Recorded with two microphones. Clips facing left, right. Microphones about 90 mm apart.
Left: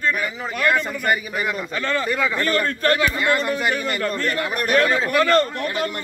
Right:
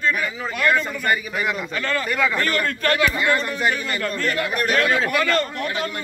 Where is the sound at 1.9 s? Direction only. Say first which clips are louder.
Right 1 dB; 20° left (ahead or behind).